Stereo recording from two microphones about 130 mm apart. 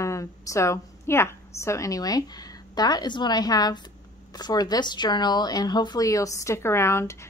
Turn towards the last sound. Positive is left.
turn(degrees=20)  # may be behind; listen again after turning